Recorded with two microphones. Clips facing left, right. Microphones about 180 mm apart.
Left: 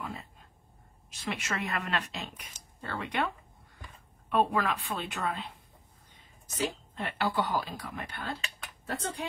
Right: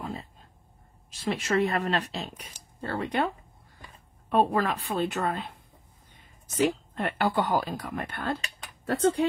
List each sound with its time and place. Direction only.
0.0 s a sound: 30° right (ahead or behind)
1.1 s speech: 30° right (ahead or behind)
4.3 s speech: 40° right (ahead or behind)
6.5 s speech: 55° right (ahead or behind)